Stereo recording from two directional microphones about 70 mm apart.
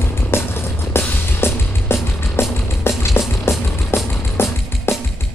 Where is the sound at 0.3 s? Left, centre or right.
Left.